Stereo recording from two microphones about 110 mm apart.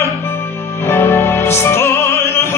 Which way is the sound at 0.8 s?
20° left (ahead or behind).